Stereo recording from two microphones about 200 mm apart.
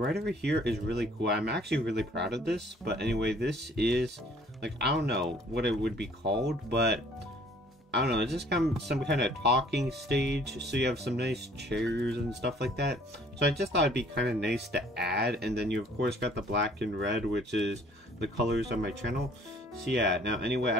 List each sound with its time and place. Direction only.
0.0 s speech: 55° right (ahead or behind)